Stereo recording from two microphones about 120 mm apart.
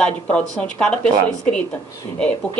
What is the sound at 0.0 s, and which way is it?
Speech, 10° left (ahead or behind).